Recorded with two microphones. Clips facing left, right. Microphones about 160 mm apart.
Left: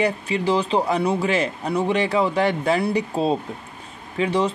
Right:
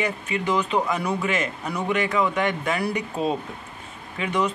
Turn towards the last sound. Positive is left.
turn(degrees=30)  # may be behind; listen again after turning